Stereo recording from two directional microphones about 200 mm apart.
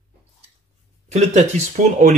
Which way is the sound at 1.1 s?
35° right (ahead or behind).